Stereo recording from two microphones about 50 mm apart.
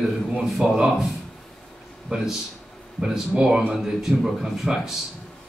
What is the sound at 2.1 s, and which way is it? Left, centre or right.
Speech, centre.